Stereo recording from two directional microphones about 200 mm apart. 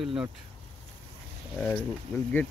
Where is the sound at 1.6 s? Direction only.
5° left (ahead or behind).